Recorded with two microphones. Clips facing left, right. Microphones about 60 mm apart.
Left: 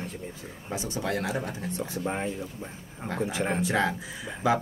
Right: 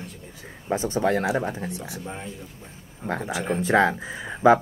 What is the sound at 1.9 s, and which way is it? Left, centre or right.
Speech, left.